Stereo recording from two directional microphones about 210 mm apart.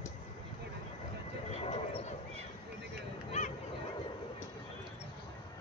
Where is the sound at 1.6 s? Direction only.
30° left (ahead or behind).